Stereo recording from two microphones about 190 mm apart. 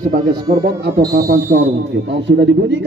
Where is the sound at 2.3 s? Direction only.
75° right (ahead or behind).